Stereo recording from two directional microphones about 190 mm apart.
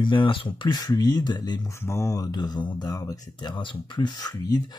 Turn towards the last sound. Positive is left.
turn(degrees=20)  # may be behind; listen again after turning